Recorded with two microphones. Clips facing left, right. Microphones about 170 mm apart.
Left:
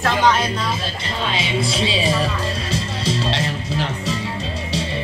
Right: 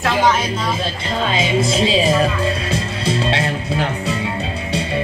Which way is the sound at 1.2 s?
45° right (ahead or behind).